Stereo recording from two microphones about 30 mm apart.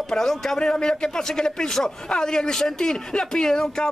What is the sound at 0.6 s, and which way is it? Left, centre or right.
Speech, left.